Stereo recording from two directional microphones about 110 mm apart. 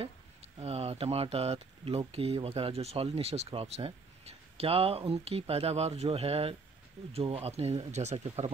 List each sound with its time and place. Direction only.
0.0 s speech: 70° right (ahead or behind); by 8.5 s 85° right